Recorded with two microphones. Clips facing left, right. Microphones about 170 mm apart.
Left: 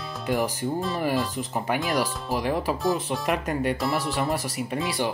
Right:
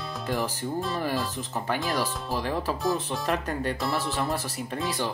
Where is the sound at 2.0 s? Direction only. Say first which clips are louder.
Left 3 dB; 15° left (ahead or behind).